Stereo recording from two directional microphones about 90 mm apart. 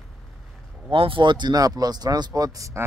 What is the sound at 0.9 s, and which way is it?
Speech, 70° right (ahead or behind).